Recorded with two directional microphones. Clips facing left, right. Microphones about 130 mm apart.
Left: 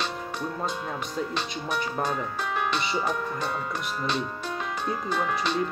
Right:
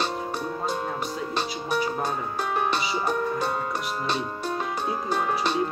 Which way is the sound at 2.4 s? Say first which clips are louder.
Right 3 dB; 40° right (ahead or behind).